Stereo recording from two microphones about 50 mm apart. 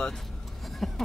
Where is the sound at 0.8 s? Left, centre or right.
Centre.